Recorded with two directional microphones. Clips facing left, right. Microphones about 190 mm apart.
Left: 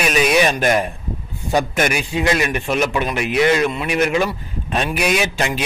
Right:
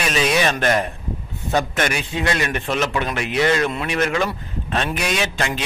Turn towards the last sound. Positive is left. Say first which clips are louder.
# left 3 dB
turn(degrees=10)  # may be behind; listen again after turning